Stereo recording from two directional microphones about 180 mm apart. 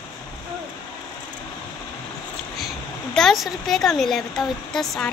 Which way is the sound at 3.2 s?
Centre (ahead or behind).